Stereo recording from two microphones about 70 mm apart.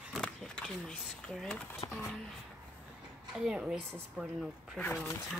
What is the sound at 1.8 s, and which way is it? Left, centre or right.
Speech, left.